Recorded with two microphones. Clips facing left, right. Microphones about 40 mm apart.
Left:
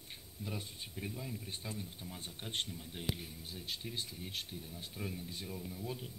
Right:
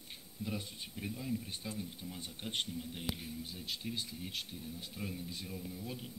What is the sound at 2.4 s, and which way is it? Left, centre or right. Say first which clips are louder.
Speech: right 2 dB; centre.